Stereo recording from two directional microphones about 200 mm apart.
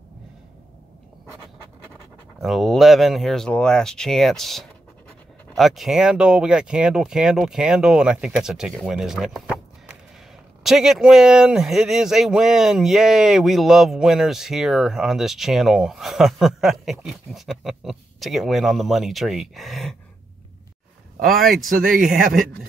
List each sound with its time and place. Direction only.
2.4 s speech: centre (ahead or behind)
21.3 s speech: centre (ahead or behind)
21.6 s speech: 45° right (ahead or behind)